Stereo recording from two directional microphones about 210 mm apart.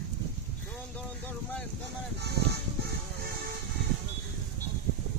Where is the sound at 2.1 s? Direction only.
50° right (ahead or behind).